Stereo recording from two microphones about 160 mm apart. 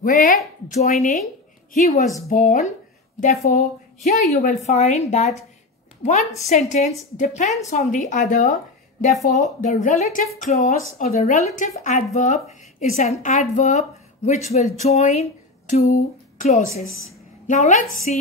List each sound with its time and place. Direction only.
0.0 s speech: 60° left (ahead or behind)
0.7 s a woman's voice: 50° left (ahead or behind)
6.5 s a woman's voice: 50° left (ahead or behind)